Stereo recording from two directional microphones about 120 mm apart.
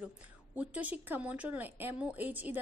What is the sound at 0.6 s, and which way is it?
Speech, 15° right (ahead or behind).